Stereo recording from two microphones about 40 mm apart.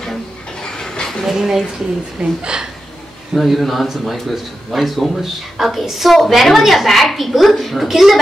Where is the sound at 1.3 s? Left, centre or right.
Centre.